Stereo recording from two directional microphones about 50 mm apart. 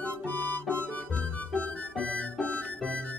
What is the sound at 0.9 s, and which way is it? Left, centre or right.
Music, left.